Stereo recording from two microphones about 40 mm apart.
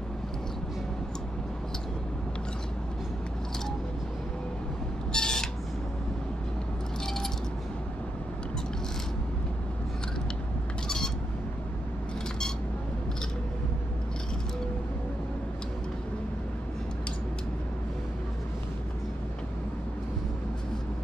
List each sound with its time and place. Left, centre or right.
5.1 s squawk: centre